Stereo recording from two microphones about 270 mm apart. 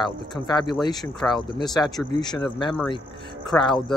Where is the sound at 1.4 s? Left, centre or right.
Centre.